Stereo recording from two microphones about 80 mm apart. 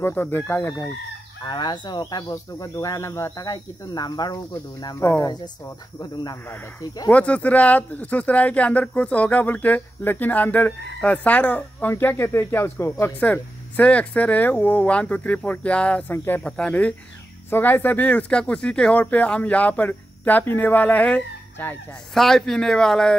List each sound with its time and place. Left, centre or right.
0.0 s speech: left
1.4 s speech: left
3.4 s speech: left
7.1 s speech: centre
13.0 s speech: centre
22.1 s speech: centre